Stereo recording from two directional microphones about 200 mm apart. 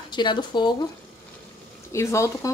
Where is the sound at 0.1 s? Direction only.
20° left (ahead or behind).